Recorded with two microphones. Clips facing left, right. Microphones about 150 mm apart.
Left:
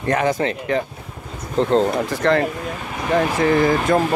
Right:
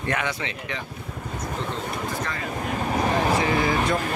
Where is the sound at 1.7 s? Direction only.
75° left (ahead or behind).